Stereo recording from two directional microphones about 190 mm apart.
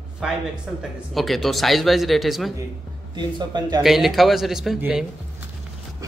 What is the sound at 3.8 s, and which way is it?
Speech, centre (ahead or behind).